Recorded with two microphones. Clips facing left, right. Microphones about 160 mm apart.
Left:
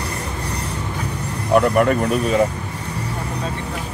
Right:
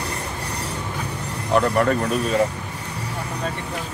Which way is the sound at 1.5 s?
15° left (ahead or behind).